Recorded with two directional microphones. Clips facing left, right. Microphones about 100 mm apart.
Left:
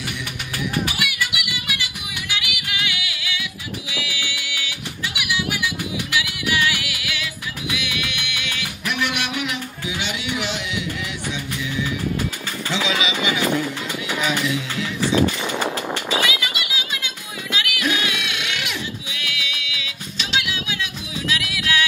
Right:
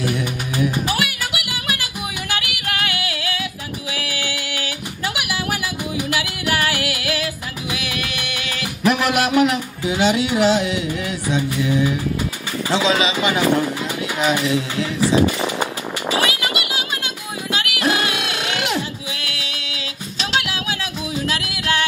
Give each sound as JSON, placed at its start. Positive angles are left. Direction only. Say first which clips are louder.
{"t": 0.0, "sound": "music", "louder": "right 8 dB", "side_deg": -40}
{"t": 12.7, "sound": "a man's voice", "louder": "right 5 dB", "side_deg": -35}
{"t": 16.3, "sound": "a sound", "louder": "right 3 dB", "side_deg": -45}
{"t": 19.0, "sound": "music", "louder": "right 1 dB", "side_deg": -40}